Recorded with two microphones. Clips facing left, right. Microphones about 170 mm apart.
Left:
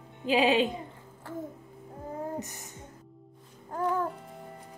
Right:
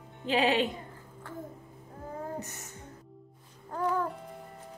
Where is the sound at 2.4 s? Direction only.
15° left (ahead or behind).